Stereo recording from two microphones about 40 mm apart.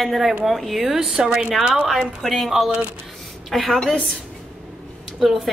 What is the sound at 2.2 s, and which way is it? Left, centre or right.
A woman's voice, centre.